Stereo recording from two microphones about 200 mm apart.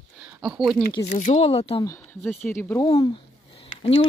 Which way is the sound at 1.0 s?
40° left (ahead or behind).